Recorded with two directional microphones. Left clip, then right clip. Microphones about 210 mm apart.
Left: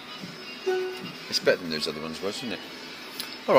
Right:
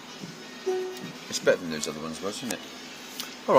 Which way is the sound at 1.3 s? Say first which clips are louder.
Even; centre (ahead or behind).